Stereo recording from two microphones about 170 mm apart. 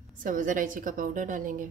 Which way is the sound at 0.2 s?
50° right (ahead or behind).